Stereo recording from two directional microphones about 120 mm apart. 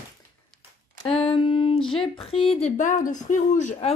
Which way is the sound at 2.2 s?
55° left (ahead or behind).